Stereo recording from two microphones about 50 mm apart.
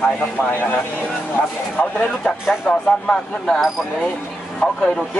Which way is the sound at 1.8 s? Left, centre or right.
Left.